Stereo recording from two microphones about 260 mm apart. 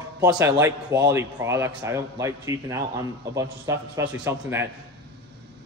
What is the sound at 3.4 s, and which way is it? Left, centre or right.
A man's voice, centre.